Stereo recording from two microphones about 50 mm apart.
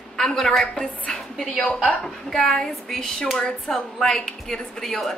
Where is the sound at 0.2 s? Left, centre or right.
Centre.